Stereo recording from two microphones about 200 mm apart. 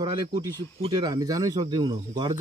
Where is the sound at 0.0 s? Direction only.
20° right (ahead or behind).